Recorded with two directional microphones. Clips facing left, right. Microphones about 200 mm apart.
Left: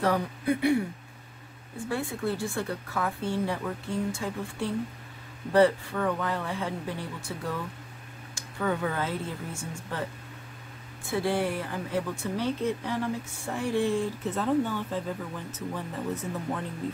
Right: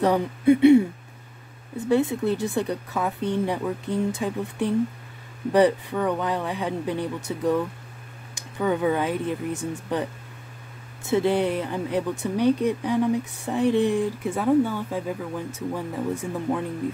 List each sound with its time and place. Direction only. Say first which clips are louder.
0.0 s a woman's voice: right 7 dB; 25° right (ahead or behind)
11.1 s speech: right 6 dB; 20° right (ahead or behind)